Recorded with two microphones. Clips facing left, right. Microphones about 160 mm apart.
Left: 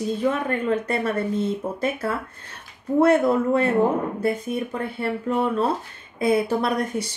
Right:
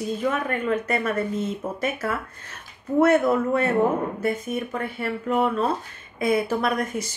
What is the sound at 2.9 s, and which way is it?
Speech, 25° left (ahead or behind).